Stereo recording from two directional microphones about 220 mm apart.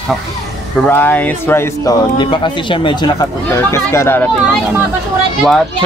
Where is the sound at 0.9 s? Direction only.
10° left (ahead or behind).